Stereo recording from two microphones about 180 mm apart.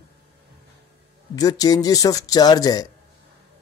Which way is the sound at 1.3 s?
20° left (ahead or behind).